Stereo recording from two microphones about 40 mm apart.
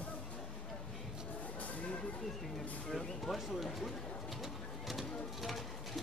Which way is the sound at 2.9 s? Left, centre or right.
Centre.